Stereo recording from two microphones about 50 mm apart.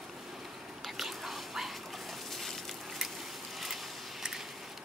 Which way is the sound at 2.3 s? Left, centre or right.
Centre.